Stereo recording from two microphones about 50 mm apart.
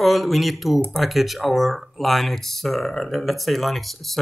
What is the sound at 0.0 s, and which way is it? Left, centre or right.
A man's voice, centre.